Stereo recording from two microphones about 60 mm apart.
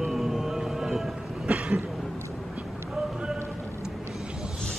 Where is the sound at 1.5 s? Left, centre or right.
Right.